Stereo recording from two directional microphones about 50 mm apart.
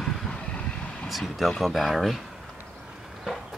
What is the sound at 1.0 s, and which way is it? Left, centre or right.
Speech, centre.